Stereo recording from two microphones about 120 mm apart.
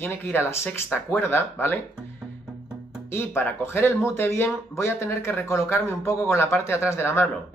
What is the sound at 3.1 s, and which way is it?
Speech, 20° left (ahead or behind).